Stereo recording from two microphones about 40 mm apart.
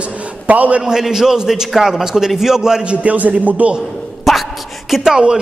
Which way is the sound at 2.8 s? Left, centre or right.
Right.